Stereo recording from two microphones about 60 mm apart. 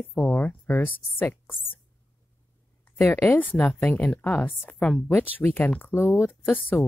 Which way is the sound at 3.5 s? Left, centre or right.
Left.